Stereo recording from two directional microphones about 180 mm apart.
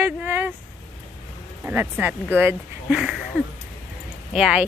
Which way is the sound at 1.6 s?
10° right (ahead or behind).